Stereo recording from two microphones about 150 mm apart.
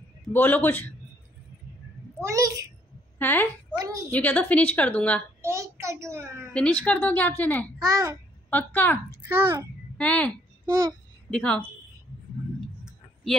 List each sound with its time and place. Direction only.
0.3 s a woman's voice: 10° left (ahead or behind)
2.2 s a child's voice: 20° right (ahead or behind)
3.2 s a woman's voice: 10° left (ahead or behind)
3.7 s a woman's voice: 25° right (ahead or behind)
4.1 s a woman's voice: 10° left (ahead or behind)
5.4 s a sound: 20° right (ahead or behind)
6.5 s a woman's voice: 5° left (ahead or behind)
7.8 s a child's voice: 25° right (ahead or behind)
8.5 s a woman's voice: 10° left (ahead or behind)
9.3 s a child's voice: 15° right (ahead or behind)
9.9 s a woman's voice: 10° left (ahead or behind)
12.5 s tick-tock: centre (ahead or behind)